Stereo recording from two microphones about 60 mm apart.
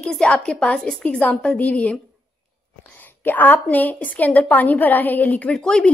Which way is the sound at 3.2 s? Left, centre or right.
Left.